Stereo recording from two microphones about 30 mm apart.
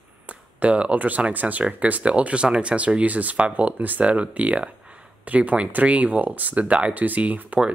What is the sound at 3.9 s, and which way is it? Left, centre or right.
Speech, right.